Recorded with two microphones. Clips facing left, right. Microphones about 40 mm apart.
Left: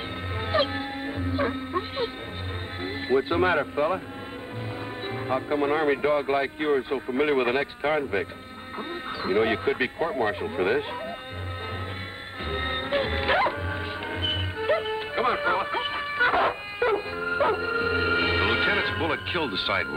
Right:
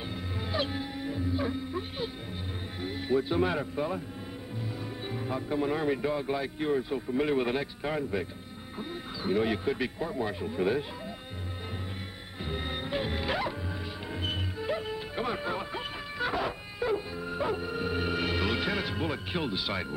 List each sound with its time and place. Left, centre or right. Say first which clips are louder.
0.4 s music: left 7 dB; left
2.8 s speech: left 4 dB; left
5.0 s speech: left 7 dB; left
12.4 s music: left 6 dB; left